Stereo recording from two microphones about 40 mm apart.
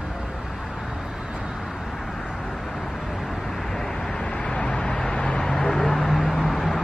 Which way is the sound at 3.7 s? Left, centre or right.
Centre.